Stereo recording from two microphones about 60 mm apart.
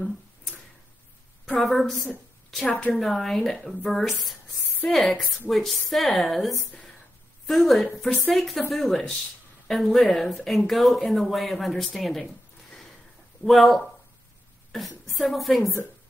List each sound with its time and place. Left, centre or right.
1.6 s speech: centre
13.4 s a woman's voice: centre
15.6 s speech: left